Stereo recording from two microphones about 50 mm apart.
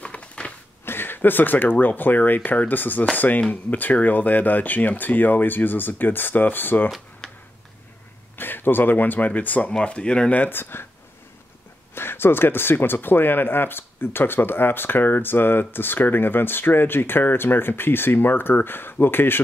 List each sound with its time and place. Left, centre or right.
0.0 s a sound: left
0.8 s speech: left
8.4 s speech: left
9.7 s speech: left
10.3 s speech: left
11.9 s speech: left